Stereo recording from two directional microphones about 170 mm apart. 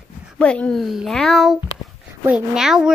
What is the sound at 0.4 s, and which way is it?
A child's voice, 5° left (ahead or behind).